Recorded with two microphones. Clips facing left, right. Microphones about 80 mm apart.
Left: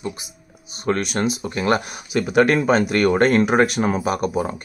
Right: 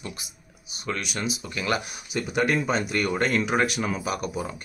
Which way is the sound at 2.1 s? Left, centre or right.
Left.